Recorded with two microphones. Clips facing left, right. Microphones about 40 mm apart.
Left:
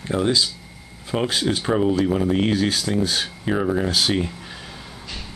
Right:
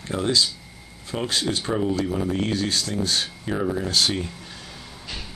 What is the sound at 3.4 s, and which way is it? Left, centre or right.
Speech, left.